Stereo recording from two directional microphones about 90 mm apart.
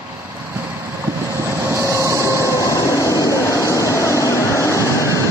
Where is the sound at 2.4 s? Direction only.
35° left (ahead or behind).